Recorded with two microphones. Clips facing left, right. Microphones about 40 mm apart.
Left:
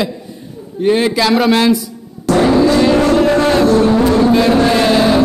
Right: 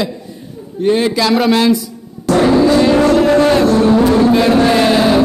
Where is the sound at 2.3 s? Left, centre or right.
Centre.